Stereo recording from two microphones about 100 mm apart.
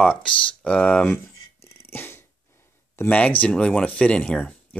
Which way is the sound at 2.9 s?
15° left (ahead or behind).